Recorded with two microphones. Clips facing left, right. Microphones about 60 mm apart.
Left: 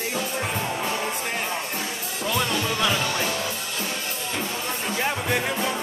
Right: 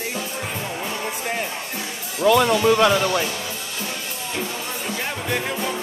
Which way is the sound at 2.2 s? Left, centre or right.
Right.